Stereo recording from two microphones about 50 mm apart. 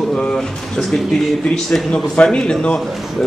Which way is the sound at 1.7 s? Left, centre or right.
Centre.